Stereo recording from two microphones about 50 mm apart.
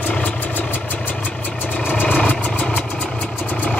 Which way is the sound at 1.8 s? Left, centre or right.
Left.